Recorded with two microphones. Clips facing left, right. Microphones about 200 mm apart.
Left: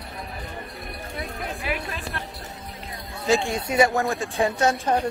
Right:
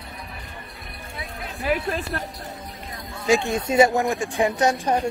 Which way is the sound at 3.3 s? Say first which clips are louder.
Right 2 dB; 20° right (ahead or behind).